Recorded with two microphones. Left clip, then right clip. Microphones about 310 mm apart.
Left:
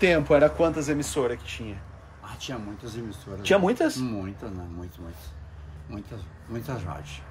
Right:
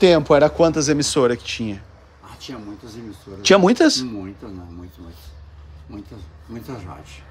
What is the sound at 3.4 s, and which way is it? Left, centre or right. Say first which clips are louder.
Speech: right 8 dB; right.